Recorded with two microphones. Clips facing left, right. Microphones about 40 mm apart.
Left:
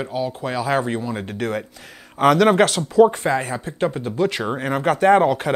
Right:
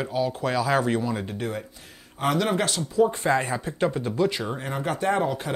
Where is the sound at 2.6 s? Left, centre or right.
Left.